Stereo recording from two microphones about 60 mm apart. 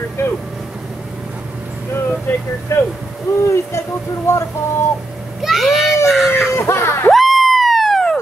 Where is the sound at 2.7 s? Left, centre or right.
Left.